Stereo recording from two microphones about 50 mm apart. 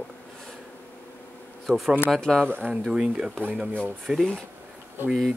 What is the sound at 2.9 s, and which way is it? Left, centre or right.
Speech, centre.